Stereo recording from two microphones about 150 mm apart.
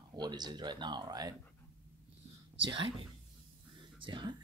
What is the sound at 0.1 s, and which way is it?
Speech, 30° right (ahead or behind).